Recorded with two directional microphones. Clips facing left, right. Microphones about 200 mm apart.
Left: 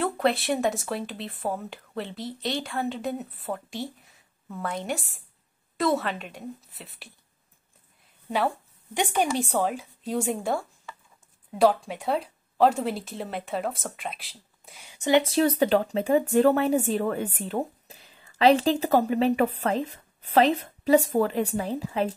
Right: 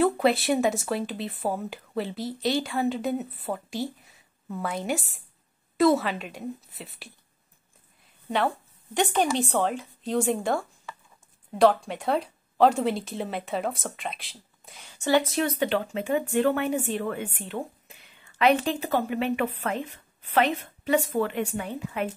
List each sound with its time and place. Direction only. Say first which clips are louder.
0.0 s speech: right 3 dB; 5° right (ahead or behind)
8.9 s speech: right 1 dB; 10° left (ahead or behind)
15.0 s speech: left 1 dB; 20° left (ahead or behind)
15.2 s speech: left 4 dB; 35° left (ahead or behind)